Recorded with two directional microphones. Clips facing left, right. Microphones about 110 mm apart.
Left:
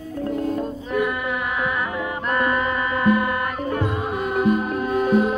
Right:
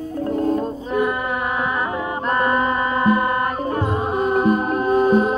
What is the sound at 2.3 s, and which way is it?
Music, 30° right (ahead or behind).